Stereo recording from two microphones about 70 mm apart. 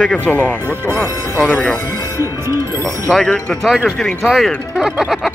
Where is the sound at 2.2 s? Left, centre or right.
Right.